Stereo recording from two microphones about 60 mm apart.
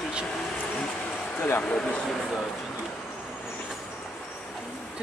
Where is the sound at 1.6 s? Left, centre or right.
Centre.